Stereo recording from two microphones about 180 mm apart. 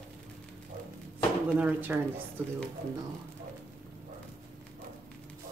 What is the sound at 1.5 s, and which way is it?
Speech, 10° right (ahead or behind).